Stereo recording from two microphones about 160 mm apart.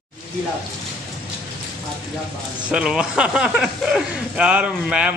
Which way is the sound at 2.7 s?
5° right (ahead or behind).